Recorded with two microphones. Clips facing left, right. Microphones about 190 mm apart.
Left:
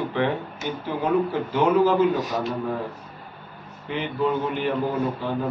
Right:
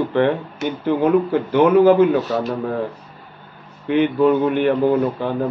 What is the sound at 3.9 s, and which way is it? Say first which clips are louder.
Speech: right 9 dB; 60° right (ahead or behind).